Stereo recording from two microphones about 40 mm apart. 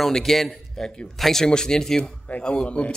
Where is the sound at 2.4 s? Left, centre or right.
Left.